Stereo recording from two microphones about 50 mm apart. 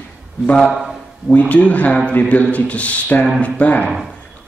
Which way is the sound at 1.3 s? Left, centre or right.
Left.